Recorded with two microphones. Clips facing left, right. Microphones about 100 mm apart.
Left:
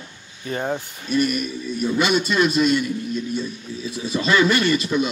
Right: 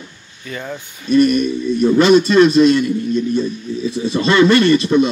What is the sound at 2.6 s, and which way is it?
Speech, 5° left (ahead or behind).